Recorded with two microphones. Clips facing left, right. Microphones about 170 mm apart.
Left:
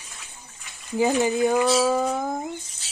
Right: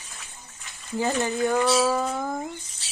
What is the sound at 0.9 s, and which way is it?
Speech, 10° left (ahead or behind).